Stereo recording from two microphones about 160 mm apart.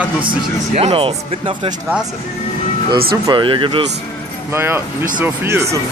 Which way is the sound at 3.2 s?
30° right (ahead or behind).